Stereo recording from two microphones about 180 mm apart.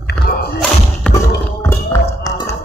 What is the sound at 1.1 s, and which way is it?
Music, 15° left (ahead or behind).